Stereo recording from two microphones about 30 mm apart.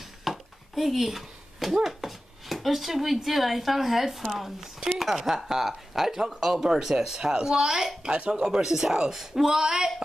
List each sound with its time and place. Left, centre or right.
0.2 s speech: centre
8.0 s speech: right
8.4 s speech: centre